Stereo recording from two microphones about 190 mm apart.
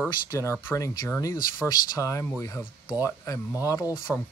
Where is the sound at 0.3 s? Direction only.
15° left (ahead or behind).